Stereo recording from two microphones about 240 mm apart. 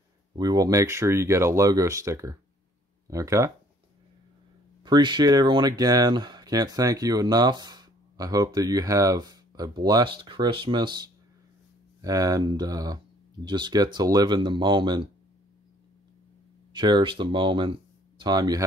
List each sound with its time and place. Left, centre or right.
0.4 s speech: centre
4.8 s speech: centre
16.7 s speech: centre